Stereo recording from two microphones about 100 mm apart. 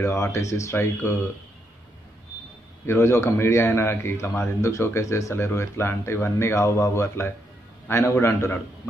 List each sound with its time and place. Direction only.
0.0 s a man's voice: 30° left (ahead or behind)
2.9 s a man's voice: 25° left (ahead or behind)